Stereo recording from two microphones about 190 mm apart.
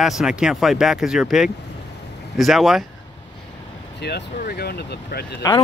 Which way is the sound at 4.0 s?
60° left (ahead or behind).